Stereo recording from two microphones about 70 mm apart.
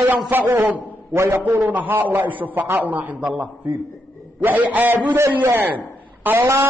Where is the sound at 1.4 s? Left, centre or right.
Right.